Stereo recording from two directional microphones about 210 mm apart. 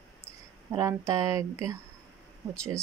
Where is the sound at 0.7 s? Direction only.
15° right (ahead or behind).